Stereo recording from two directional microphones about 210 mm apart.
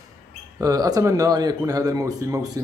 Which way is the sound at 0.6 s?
15° right (ahead or behind).